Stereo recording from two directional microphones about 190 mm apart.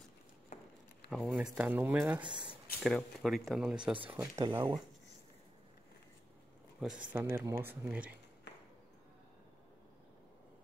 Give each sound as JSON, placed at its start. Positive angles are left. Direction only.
{"t": 0.5, "sound": "a sound", "side_deg": 40}
{"t": 1.2, "sound": "speech", "side_deg": -5}
{"t": 2.2, "sound": "speech", "side_deg": -25}
{"t": 2.8, "sound": "speech", "side_deg": 0}
{"t": 4.1, "sound": "speech", "side_deg": -15}
{"t": 6.8, "sound": "speech", "side_deg": -5}